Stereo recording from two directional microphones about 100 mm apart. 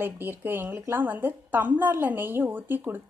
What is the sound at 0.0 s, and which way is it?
A woman's voice, 20° right (ahead or behind).